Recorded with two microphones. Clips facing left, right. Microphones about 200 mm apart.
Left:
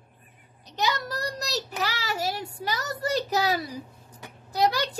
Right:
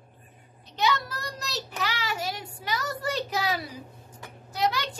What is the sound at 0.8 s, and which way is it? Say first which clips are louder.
Child singing: right 1 dB; 40° left (ahead or behind).